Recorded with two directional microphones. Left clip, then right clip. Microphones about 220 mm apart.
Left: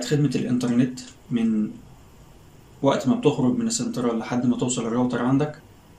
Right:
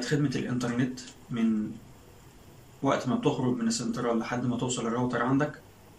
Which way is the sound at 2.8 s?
15° left (ahead or behind).